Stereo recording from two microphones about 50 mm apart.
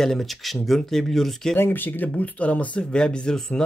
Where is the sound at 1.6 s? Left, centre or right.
Left; by 3.6 s centre.